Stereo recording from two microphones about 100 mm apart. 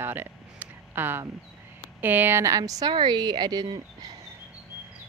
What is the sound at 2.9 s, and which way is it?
Speech, 45° right (ahead or behind).